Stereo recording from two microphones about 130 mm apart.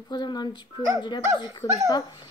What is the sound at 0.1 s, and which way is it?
Speech, 35° left (ahead or behind).